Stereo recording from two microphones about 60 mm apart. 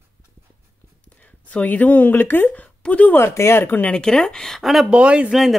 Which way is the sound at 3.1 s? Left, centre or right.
Left.